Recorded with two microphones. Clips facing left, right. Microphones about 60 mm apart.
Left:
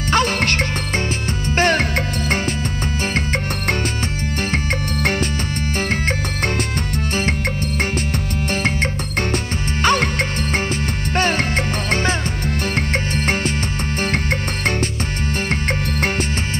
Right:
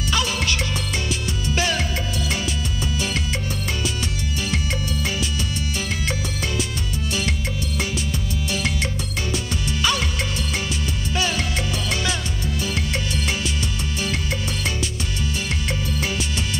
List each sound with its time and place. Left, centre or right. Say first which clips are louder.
0.1 s music: left 6 dB; left
5.0 s music: left 5 dB; left
9.3 s music: left 3 dB; left